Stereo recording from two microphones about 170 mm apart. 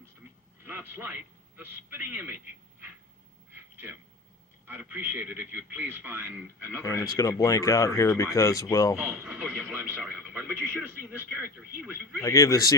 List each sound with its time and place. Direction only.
0.7 s a man's voice: 15° right (ahead or behind)
3.5 s a sound: 15° right (ahead or behind)
4.6 s speech: 10° right (ahead or behind)
6.8 s speech: 20° left (ahead or behind)
9.0 s speech: 10° right (ahead or behind)
12.2 s speech: 20° left (ahead or behind)